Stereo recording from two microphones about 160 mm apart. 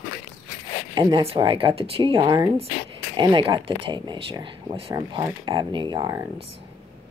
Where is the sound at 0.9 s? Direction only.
30° right (ahead or behind).